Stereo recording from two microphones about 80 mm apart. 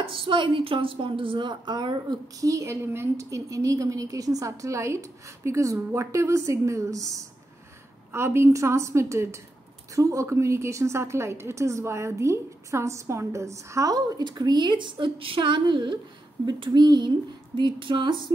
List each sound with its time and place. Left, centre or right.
0.1 s a woman's voice: right
2.4 s a woman's voice: right
8.1 s a woman's voice: right
16.4 s speech: right
17.6 s a woman's voice: right